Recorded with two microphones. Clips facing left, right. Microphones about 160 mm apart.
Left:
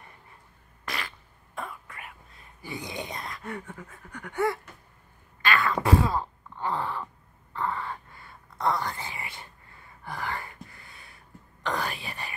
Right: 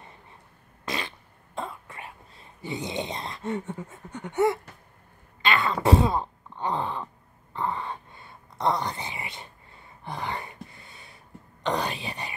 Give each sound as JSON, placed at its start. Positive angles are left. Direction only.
{"t": 0.8, "sound": "throat clearing", "side_deg": -20}
{"t": 5.4, "sound": "groan", "side_deg": -20}
{"t": 7.5, "sound": "a sound", "side_deg": -20}
{"t": 11.6, "sound": "whispering", "side_deg": -20}